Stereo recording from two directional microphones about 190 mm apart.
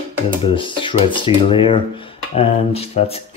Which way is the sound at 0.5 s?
25° left (ahead or behind).